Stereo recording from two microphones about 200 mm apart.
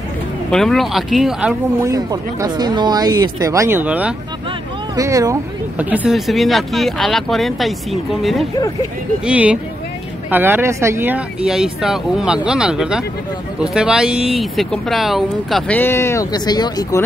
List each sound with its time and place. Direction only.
0.5 s speech: centre (ahead or behind)
1.8 s speech: 15° right (ahead or behind); by 17.0 s 20° left (ahead or behind)